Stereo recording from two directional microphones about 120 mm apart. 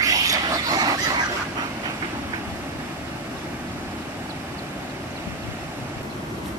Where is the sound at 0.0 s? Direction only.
30° right (ahead or behind).